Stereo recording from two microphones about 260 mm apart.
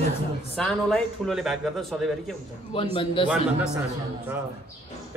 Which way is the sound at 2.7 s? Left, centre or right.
Centre.